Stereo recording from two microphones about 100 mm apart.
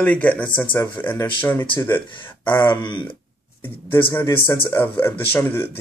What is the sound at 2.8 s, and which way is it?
Speech, 50° left (ahead or behind).